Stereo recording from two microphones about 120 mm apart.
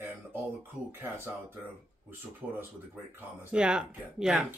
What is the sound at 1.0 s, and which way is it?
Speech, 20° right (ahead or behind).